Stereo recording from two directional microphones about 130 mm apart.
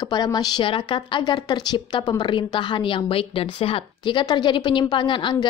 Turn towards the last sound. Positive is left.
turn(degrees=40)  # may be behind; listen again after turning